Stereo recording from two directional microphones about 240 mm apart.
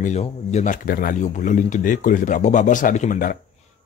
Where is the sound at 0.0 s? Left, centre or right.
Left.